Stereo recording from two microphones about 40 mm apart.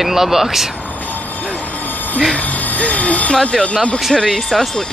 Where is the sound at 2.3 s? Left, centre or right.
Left.